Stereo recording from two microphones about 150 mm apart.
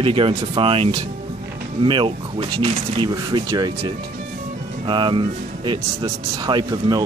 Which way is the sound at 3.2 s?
25° right (ahead or behind).